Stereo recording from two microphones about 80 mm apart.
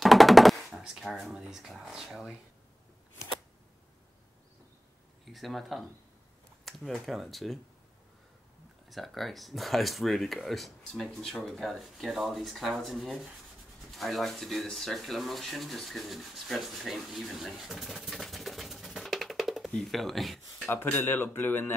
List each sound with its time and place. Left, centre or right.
0.0 s a sound: centre
5.2 s speech: centre
8.8 s speech: centre
20.6 s speech: left